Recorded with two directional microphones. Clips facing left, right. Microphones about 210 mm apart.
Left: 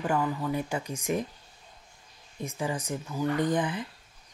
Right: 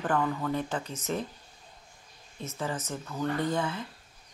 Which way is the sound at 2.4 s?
15° left (ahead or behind).